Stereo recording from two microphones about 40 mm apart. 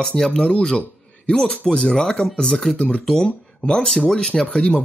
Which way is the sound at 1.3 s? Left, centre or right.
Left.